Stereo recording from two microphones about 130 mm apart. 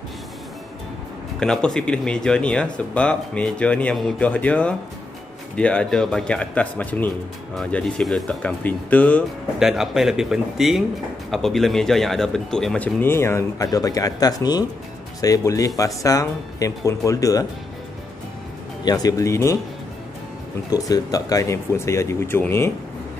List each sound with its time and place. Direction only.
1.4 s speech: 5° left (ahead or behind)
9.6 s a man's voice: 5° right (ahead or behind); by 17.5 s 25° left (ahead or behind)
18.9 s speech: 30° left (ahead or behind)
20.7 s speech: 30° left (ahead or behind)